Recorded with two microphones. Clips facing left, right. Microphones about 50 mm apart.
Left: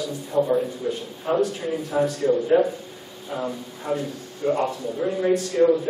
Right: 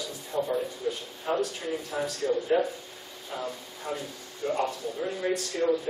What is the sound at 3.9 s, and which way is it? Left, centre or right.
Speech, centre.